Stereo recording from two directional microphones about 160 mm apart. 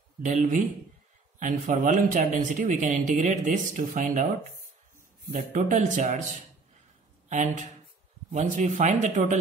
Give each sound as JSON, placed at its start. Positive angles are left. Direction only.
{"t": 0.2, "sound": "speech", "side_deg": -50}
{"t": 5.3, "sound": "speech", "side_deg": -55}
{"t": 7.2, "sound": "speech", "side_deg": -50}